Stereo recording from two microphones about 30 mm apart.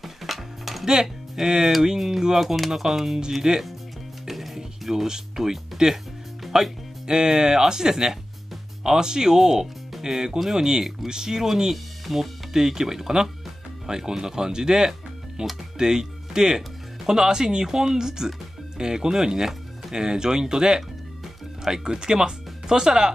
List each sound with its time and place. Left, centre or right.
0.0 s music: centre
0.8 s speech: centre
2.4 s speech: centre
2.7 s speech: centre
3.4 s speech: right
4.6 s music: centre
5.3 s speech: centre
5.8 s speech: right
11.7 s speech: centre; by 20.8 s right
21.8 s speech: right